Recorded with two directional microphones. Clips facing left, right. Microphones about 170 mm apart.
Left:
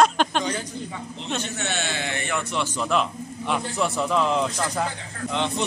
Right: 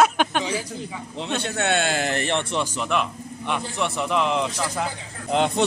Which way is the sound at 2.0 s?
30° right (ahead or behind).